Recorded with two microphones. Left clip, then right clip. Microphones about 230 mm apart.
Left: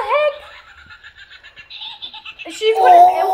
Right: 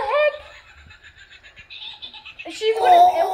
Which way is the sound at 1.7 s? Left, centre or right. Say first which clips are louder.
Left 5 dB; centre.